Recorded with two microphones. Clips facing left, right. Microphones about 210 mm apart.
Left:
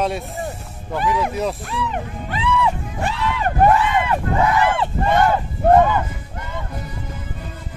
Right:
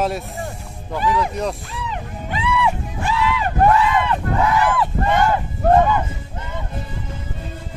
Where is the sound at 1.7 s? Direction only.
65° left (ahead or behind).